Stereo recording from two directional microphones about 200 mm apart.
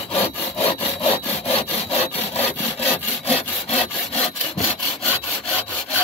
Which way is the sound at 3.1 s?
30° left (ahead or behind).